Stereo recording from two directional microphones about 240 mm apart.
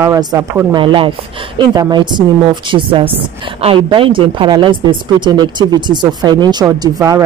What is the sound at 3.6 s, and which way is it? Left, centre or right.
A woman's voice, right.